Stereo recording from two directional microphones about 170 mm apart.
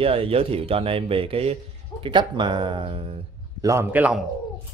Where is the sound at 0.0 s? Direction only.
35° right (ahead or behind).